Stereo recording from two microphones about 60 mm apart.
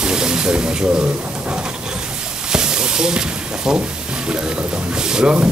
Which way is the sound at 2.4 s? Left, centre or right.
Centre.